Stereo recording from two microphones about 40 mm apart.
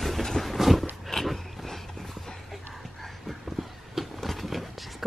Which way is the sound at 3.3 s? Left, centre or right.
Centre.